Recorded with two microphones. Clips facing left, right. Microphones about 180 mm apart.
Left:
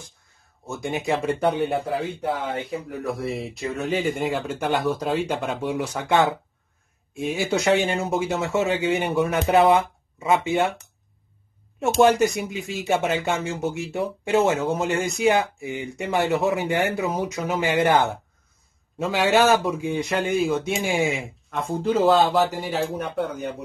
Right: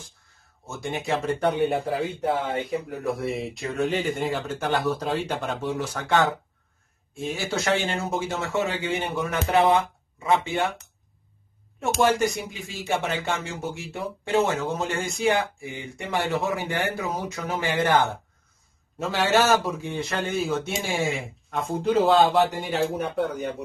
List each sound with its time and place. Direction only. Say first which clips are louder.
0.7 s speech: left 3 dB; 15° left (ahead or behind)
1.3 s speech: right 1 dB; centre (ahead or behind)
5.6 s speech: left 2 dB; 15° left (ahead or behind)
11.8 s speech: left 4 dB; 20° left (ahead or behind)
19.0 s speech: left 3 dB; 15° left (ahead or behind)
21.5 s speech: left 1 dB; centre (ahead or behind)